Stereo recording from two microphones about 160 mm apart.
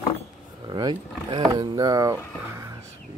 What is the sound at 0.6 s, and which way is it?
Speech, 30° right (ahead or behind).